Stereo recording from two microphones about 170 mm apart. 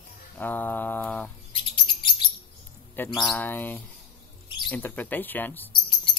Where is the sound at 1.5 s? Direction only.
30° left (ahead or behind).